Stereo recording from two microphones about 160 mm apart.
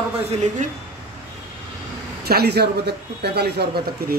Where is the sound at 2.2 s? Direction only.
85° right.